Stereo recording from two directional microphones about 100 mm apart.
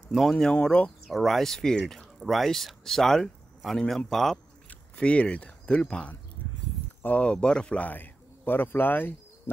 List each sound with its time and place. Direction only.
0.1 s speech: 5° left (ahead or behind)
1.0 s speech: centre (ahead or behind); by 9.1 s 20° left (ahead or behind)